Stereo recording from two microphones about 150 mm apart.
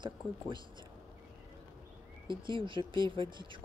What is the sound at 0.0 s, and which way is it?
Speech, 30° right (ahead or behind).